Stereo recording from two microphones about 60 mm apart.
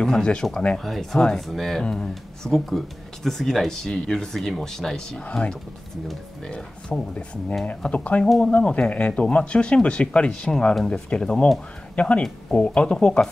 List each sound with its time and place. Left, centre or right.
0.0 s speech: centre
0.7 s speech: centre
5.2 s speech: centre
6.5 s speech: centre
10.5 s speech: centre
10.9 s speech: centre